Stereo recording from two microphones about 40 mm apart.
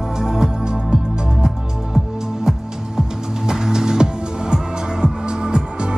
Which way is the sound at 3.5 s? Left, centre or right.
Centre.